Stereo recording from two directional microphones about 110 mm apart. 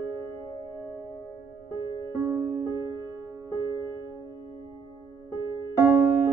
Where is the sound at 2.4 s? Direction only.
30° right (ahead or behind).